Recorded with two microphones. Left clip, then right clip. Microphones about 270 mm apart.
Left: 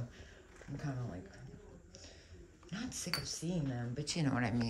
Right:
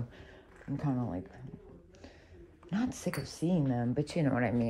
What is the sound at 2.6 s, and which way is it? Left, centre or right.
Speech, centre.